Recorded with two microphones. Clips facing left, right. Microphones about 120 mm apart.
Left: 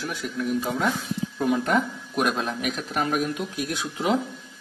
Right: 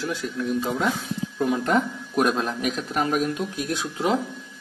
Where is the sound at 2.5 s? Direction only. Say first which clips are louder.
Right 2 dB; 5° left (ahead or behind).